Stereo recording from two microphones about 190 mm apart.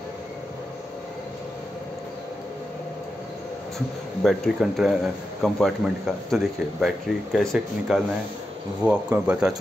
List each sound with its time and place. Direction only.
4.2 s speech: centre (ahead or behind)